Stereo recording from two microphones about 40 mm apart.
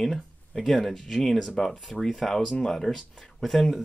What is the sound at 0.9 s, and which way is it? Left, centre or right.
Speech, centre.